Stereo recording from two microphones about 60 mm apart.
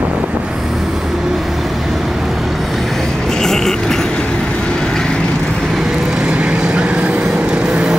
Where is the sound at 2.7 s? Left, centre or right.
Centre.